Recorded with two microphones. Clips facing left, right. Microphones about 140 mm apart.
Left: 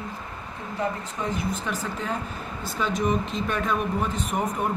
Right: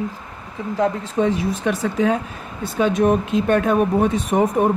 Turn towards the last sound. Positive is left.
turn(degrees=-75)  # may be behind; listen again after turning